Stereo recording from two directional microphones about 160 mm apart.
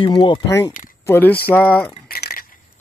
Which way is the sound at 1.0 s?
15° left (ahead or behind).